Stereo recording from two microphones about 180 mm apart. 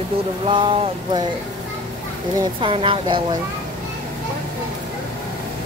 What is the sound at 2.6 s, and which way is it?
Speech, 30° right (ahead or behind).